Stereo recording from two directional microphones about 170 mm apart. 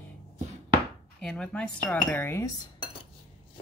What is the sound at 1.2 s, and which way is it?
Speech, 5° left (ahead or behind).